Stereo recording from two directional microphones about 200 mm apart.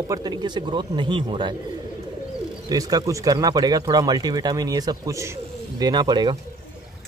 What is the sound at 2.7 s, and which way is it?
Speech, 20° right (ahead or behind).